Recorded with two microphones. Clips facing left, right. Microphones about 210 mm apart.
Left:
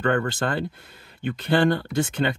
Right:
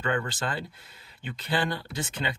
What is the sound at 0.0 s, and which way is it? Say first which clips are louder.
Speech: left 6 dB; 60° left (ahead or behind).